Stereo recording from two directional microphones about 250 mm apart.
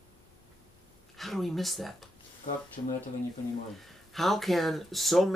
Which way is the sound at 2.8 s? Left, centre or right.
Left.